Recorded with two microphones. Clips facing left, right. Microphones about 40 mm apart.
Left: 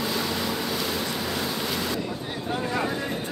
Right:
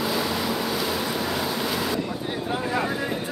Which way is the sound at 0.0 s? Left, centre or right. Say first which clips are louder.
Right 2 dB; centre.